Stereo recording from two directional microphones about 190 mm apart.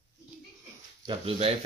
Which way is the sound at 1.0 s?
30° right (ahead or behind).